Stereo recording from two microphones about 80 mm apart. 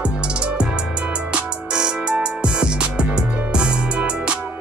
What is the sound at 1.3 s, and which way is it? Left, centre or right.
Music, centre.